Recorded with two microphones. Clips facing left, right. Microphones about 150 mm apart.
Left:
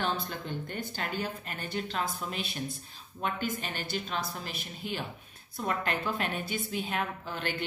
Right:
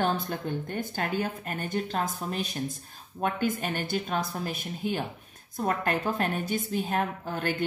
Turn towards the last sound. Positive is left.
turn(degrees=-45)  # may be behind; listen again after turning